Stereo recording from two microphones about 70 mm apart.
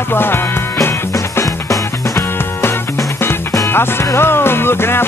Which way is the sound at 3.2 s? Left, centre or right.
Left.